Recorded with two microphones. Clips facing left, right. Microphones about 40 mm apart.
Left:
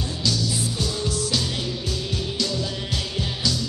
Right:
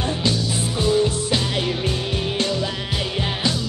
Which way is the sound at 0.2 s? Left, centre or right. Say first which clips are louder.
Right 3 dB; right.